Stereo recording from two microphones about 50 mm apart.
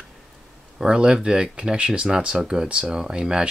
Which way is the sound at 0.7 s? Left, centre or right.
Centre.